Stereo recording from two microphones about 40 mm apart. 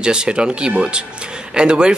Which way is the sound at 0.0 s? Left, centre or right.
Right.